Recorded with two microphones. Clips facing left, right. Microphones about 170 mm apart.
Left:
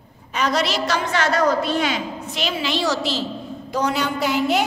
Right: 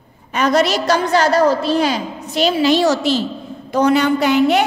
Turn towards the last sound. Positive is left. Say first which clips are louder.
# right 7 dB
turn(degrees=-65)  # may be behind; listen again after turning